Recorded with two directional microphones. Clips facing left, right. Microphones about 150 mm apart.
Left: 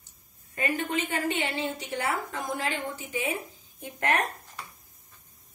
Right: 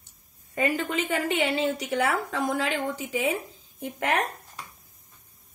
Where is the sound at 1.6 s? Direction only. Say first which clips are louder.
Right 6 dB; 90° right.